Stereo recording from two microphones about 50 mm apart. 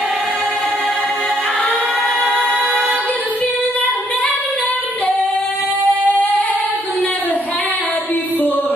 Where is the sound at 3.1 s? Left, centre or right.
Left.